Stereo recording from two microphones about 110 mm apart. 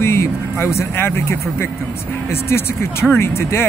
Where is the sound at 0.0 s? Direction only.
25° left (ahead or behind).